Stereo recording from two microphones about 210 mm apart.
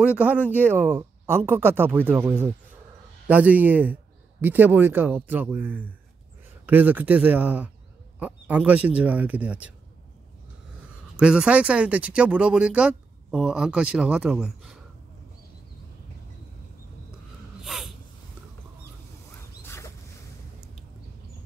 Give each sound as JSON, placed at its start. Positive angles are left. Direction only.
{"t": 0.0, "sound": "speech", "side_deg": -5}
{"t": 11.1, "sound": "speech", "side_deg": -5}
{"t": 17.6, "sound": "snort", "side_deg": 0}
{"t": 19.3, "sound": "a sound", "side_deg": 10}